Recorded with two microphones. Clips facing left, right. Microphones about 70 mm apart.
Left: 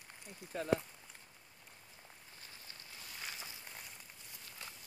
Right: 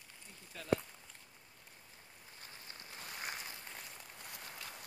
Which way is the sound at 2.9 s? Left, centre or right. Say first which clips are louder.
Right 4 dB; right.